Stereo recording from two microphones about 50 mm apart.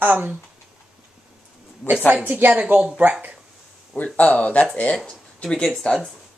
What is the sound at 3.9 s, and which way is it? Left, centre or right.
Speech, left.